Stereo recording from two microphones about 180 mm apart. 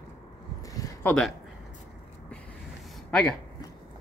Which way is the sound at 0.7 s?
10° left (ahead or behind).